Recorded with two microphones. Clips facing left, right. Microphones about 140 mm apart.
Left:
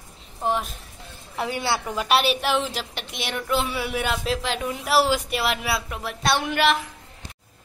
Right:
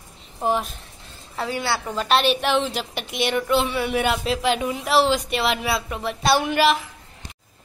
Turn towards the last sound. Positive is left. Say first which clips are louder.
# right 3 dB
turn(degrees=0)  # may be behind; listen again after turning